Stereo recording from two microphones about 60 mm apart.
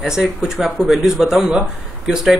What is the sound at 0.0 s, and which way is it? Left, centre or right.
Speech, centre.